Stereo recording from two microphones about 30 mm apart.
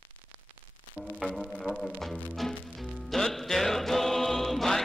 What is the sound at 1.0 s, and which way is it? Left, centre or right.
Music, left.